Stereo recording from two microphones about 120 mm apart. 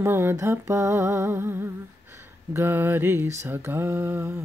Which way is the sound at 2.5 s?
20° right (ahead or behind).